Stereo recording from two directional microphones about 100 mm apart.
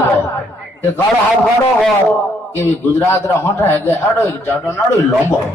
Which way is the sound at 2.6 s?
20° left (ahead or behind).